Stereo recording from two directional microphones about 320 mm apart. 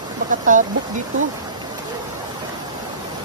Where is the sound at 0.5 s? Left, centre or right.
Right.